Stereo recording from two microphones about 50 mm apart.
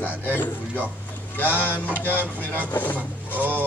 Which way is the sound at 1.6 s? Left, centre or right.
Left.